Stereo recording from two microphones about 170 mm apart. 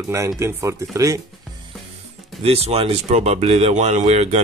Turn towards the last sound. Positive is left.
turn(degrees=-40)  # may be behind; listen again after turning